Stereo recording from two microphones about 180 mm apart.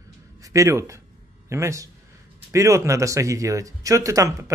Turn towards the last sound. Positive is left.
turn(degrees=-15)  # may be behind; listen again after turning